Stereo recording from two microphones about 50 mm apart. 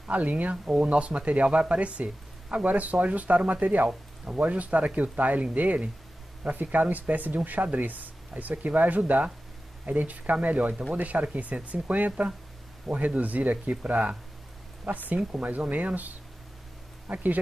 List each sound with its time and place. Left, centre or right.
0.1 s speech: right
14.9 s speech: centre
15.4 s speech: right
17.1 s speech: right